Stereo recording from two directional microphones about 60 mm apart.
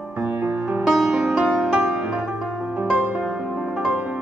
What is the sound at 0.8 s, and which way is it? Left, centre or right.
Music, centre.